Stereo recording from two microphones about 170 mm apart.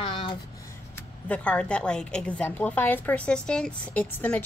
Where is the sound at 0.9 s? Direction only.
5° left (ahead or behind).